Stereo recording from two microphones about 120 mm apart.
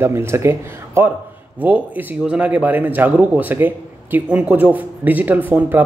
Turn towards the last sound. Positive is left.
turn(degrees=-15)  # may be behind; listen again after turning